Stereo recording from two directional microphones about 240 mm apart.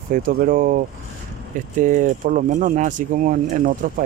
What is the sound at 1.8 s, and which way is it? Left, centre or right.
Speech, right.